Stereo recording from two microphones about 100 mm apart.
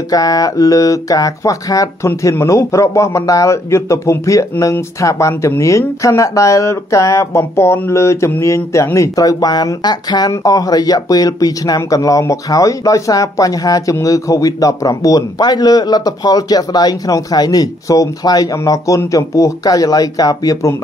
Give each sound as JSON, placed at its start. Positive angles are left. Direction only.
{"t": 0.1, "sound": "speech", "side_deg": 40}